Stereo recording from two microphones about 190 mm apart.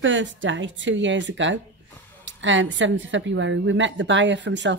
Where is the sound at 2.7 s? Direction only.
75° right (ahead or behind).